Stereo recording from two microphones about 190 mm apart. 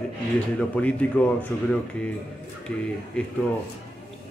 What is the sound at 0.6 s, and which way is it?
Speech, 5° left (ahead or behind).